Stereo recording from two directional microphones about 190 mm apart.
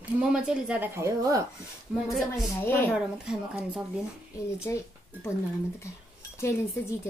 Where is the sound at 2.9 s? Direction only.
5° right (ahead or behind).